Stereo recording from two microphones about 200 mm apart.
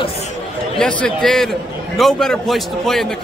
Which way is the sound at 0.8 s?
5° left (ahead or behind).